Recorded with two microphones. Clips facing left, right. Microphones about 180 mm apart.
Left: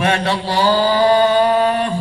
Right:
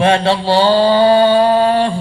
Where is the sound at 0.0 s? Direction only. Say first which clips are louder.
Right 5 dB; 30° right (ahead or behind).